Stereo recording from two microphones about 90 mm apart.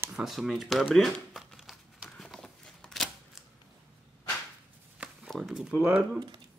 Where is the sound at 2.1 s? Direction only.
5° left (ahead or behind).